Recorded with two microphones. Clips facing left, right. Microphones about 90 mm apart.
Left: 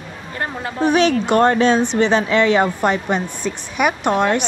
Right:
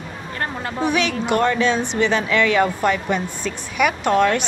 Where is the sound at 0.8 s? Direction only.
35° left (ahead or behind); by 4.4 s 20° left (ahead or behind).